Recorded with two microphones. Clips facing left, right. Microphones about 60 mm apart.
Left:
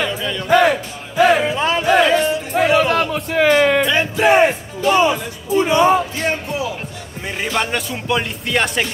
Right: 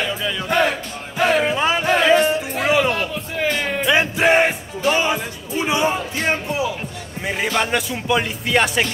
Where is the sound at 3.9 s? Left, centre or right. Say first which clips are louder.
Left 1 dB; centre.